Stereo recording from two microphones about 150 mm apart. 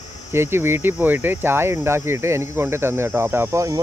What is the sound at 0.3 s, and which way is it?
Speech, 15° right (ahead or behind).